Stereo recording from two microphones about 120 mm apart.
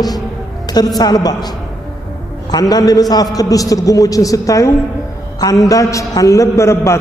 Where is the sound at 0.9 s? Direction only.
35° left (ahead or behind).